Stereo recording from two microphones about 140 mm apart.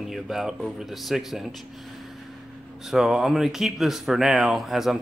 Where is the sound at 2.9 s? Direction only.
5° right (ahead or behind).